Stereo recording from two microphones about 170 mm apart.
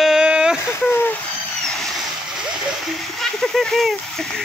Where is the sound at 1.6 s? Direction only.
5° left (ahead or behind).